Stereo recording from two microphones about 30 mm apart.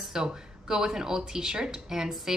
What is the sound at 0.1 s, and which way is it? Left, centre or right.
A woman's voice, right.